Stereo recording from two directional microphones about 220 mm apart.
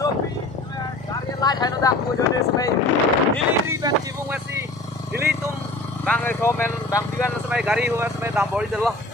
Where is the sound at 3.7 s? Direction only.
15° right (ahead or behind).